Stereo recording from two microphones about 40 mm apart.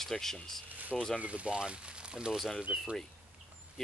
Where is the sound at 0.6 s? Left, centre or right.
Right.